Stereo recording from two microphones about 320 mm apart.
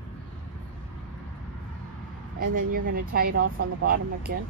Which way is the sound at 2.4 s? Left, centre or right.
Right.